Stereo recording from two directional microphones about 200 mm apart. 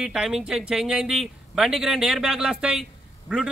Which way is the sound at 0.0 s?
5° right (ahead or behind).